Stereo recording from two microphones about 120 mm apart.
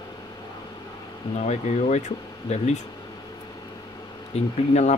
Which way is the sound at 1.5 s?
70° left (ahead or behind).